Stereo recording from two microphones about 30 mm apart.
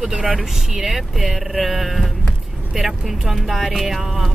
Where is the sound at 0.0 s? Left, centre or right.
Centre.